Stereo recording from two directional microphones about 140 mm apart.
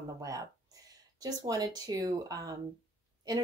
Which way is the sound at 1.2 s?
25° right (ahead or behind).